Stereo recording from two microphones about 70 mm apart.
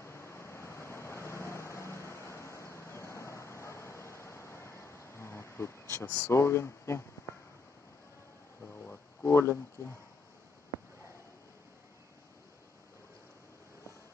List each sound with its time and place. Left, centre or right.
0.0 s vehicle: left
6.3 s speech: left
9.2 s speech: left